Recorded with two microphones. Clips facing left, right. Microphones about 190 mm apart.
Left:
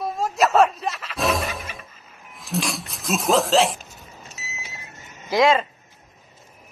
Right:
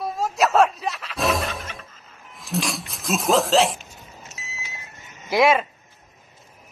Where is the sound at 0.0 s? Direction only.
Centre (ahead or behind).